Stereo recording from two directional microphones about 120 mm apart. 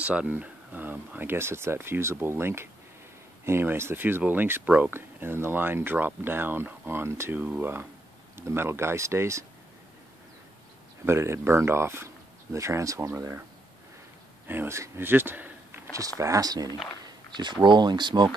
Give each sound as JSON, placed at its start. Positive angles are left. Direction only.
{"t": 0.0, "sound": "speech", "side_deg": -10}
{"t": 11.1, "sound": "speech", "side_deg": -20}
{"t": 14.5, "sound": "speech", "side_deg": -20}
{"t": 15.9, "sound": "speech", "side_deg": -25}